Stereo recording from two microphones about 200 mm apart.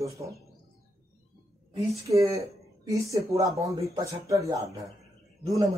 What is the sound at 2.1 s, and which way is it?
Speech, 15° right (ahead or behind).